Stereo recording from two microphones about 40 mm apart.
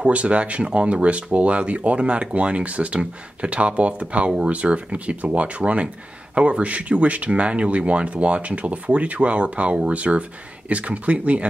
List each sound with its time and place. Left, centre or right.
0.0 s speech: right